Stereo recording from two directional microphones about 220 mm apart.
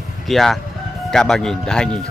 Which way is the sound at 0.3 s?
Centre (ahead or behind).